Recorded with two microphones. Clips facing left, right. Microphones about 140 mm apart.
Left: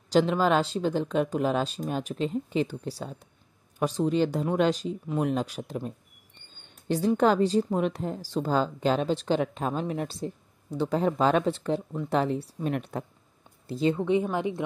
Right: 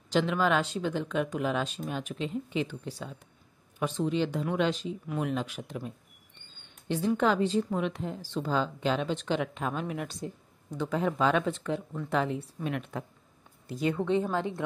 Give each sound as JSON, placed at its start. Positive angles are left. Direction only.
{"t": 0.1, "sound": "speech", "side_deg": 35}
{"t": 6.7, "sound": "a sound", "side_deg": 35}
{"t": 7.2, "sound": "speech", "side_deg": 40}
{"t": 13.7, "sound": "speech", "side_deg": 25}